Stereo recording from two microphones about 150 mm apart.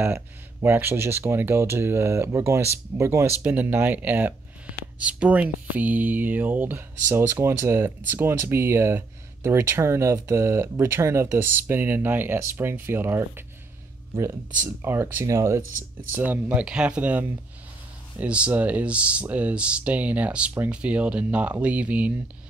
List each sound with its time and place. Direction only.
0.0 s speech: 15° right (ahead or behind)
14.8 s speech: 15° right (ahead or behind)
16.2 s speech: 10° right (ahead or behind)